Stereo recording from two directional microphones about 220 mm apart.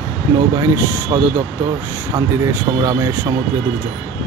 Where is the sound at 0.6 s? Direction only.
10° right (ahead or behind).